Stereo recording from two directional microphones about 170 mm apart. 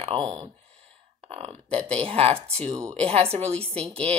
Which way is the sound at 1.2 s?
35° right (ahead or behind).